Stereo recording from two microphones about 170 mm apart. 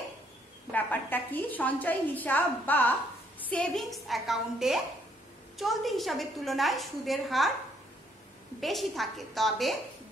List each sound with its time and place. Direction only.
0.7 s a woman's voice: 10° left (ahead or behind)
8.5 s a woman's voice: centre (ahead or behind)